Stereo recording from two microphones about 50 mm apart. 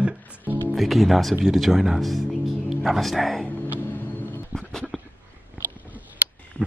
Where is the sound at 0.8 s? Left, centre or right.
Centre.